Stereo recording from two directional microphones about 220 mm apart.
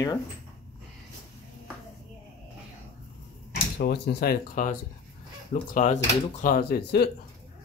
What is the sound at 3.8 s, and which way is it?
Speech, 45° left (ahead or behind).